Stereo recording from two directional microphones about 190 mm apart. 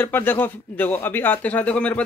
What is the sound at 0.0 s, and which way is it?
Speech, 10° left (ahead or behind).